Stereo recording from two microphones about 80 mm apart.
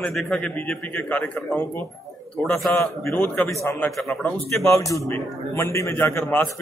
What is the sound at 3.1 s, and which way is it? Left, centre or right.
Speech, centre.